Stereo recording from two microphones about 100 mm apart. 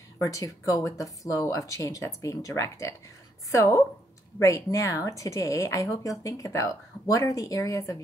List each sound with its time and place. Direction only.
0.2 s speech: 35° left (ahead or behind)